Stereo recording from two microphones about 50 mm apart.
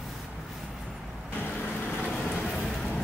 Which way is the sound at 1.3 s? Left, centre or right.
Left.